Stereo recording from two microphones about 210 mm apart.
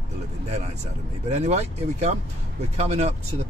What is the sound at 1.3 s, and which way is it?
Speech, 35° right (ahead or behind).